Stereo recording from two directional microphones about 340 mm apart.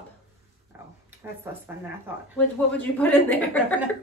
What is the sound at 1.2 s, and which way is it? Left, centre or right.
Speech, centre.